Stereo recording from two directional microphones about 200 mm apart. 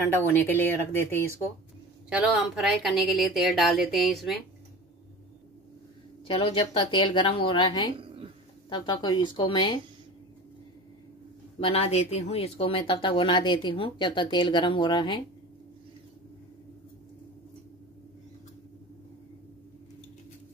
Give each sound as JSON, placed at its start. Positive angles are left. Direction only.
{"t": 0.1, "sound": "speech", "side_deg": 10}
{"t": 2.0, "sound": "a woman's voice", "side_deg": -5}
{"t": 6.2, "sound": "speech", "side_deg": 25}
{"t": 11.6, "sound": "speech", "side_deg": 30}